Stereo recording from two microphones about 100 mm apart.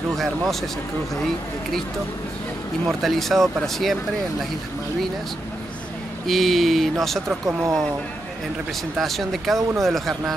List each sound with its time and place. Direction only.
0.1 s speech: centre (ahead or behind)
2.9 s speech: centre (ahead or behind)
6.2 s speech: centre (ahead or behind)
7.2 s speech: 25° right (ahead or behind)
8.9 s speech: centre (ahead or behind)